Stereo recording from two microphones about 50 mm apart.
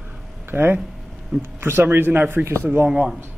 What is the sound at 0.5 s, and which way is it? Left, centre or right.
Speech, right.